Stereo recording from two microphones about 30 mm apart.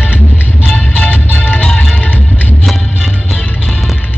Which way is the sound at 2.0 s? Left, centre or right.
Left.